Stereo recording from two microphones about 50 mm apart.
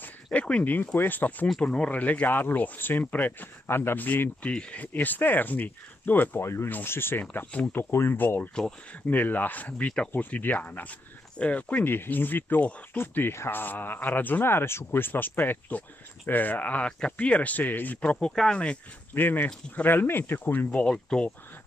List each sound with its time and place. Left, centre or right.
0.0 s a sound: left
0.9 s speech: left
4.0 s speech: left
4.9 s speech: left
6.4 s speech: left
6.7 s speech: left
8.2 s speech: left
8.5 s speech: centre
9.1 s speech: left
11.8 s speech: left
14.4 s speech: left
18.1 s speech: centre
19.1 s speech: left
20.8 s speech: centre